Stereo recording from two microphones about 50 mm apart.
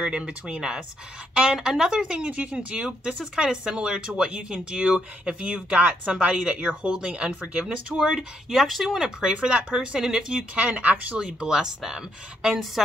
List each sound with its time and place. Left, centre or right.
0.0 s speech: right
2.2 s speech: right
2.7 s speech: centre
6.6 s speech: right
8.5 s speech: centre
9.2 s speech: centre
11.1 s speech: centre